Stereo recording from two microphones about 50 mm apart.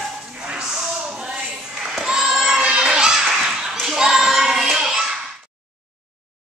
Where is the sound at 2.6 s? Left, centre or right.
Centre.